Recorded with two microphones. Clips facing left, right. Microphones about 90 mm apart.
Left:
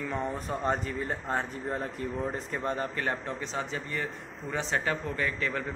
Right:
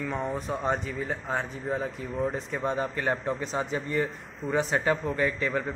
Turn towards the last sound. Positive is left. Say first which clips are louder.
# right 4 dB
turn(degrees=-15)  # may be behind; listen again after turning